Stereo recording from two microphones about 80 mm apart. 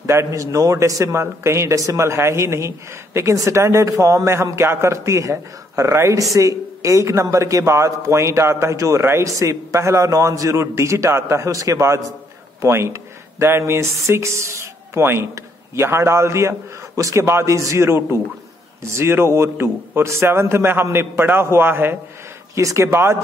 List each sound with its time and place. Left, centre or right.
0.0 s speech: right
22.6 s speech: right